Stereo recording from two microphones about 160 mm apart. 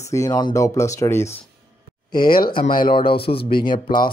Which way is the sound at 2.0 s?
30° left (ahead or behind).